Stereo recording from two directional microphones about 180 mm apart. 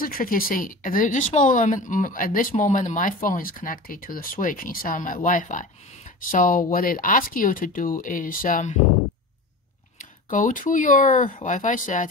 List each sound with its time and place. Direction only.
0.0 s speech: 55° left (ahead or behind)
9.9 s speech: 50° left (ahead or behind)